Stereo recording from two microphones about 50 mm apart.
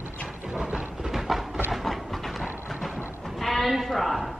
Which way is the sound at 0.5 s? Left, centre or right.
Centre.